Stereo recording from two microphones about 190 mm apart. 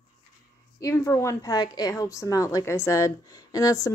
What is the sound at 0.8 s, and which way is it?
A woman's voice, 15° left (ahead or behind).